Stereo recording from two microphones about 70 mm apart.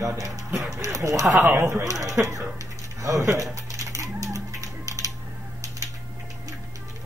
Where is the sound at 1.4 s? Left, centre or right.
Right.